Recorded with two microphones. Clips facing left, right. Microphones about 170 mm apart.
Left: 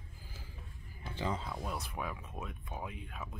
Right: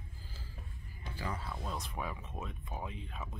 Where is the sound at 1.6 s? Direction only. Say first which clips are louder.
Left 1 dB; 5° left (ahead or behind).